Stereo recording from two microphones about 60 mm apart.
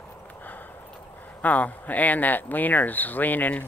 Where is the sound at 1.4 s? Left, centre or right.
Left.